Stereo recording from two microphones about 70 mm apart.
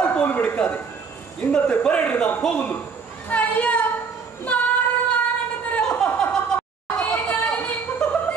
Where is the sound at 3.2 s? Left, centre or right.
Left.